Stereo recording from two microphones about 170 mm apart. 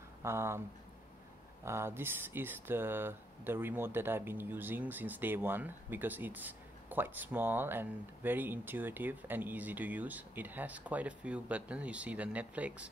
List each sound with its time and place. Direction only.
0.2 s speech: 15° right (ahead or behind)
1.6 s speech: 15° right (ahead or behind)